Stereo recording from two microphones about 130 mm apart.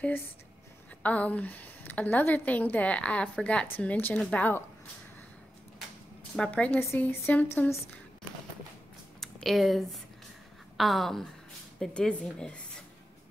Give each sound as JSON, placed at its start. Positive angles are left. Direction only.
{"t": 1.0, "sound": "a woman's voice", "side_deg": 10}
{"t": 6.3, "sound": "a woman's voice", "side_deg": 5}
{"t": 9.2, "sound": "a woman's voice", "side_deg": 0}